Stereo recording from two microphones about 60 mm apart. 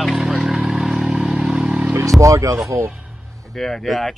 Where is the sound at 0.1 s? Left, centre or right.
Centre.